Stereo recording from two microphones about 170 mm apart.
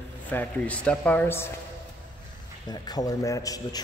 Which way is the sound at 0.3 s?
10° left (ahead or behind).